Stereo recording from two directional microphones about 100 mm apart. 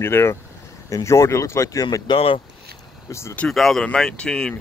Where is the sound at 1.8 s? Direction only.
45° left (ahead or behind).